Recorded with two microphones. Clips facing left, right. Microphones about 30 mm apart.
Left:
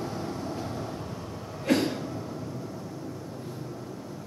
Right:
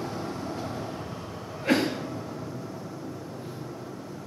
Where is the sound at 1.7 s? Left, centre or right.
Centre.